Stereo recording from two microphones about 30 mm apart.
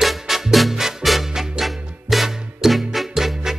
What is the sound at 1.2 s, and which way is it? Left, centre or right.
Music, centre.